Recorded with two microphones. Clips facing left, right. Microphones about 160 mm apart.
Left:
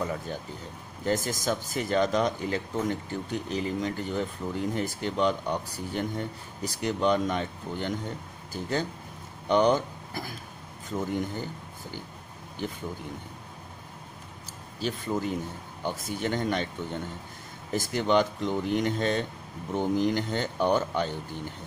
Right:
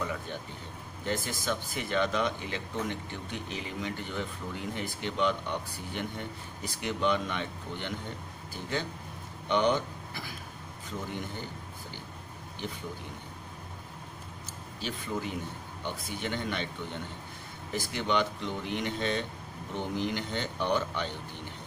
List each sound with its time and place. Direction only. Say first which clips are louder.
0.0 s speech: left 3 dB; 40° left (ahead or behind)
14.8 s speech: left 5 dB; 40° left (ahead or behind)
17.7 s speech: left 5 dB; 45° left (ahead or behind)